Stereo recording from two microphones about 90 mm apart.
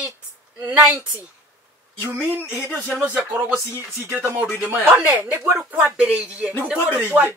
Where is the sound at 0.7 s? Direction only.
20° right (ahead or behind).